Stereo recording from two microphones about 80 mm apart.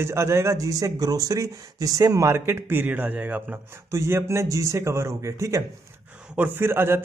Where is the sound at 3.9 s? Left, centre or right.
Right.